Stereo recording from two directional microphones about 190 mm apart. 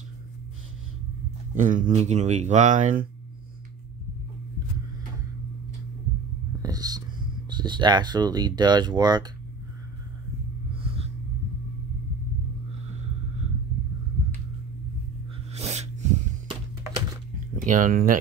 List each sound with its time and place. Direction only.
1.5 s speech: 45° right (ahead or behind)
6.6 s a sound: 20° right (ahead or behind)
7.4 s speech: 25° right (ahead or behind)
15.5 s snort: 35° right (ahead or behind)
16.4 s music: 20° right (ahead or behind)
17.6 s speech: 45° right (ahead or behind)